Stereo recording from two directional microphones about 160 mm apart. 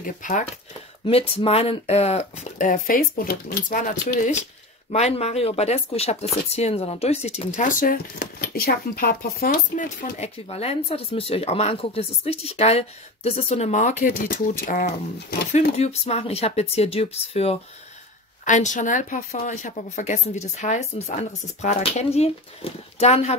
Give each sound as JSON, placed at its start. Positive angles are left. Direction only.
{"t": 0.0, "sound": "speech", "side_deg": 55}
{"t": 1.0, "sound": "speech", "side_deg": 35}
{"t": 10.5, "sound": "speech", "side_deg": 40}
{"t": 15.8, "sound": "speech", "side_deg": 40}
{"t": 18.4, "sound": "speech", "side_deg": 50}